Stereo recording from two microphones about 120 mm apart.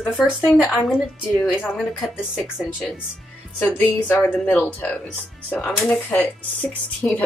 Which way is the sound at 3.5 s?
15° left (ahead or behind).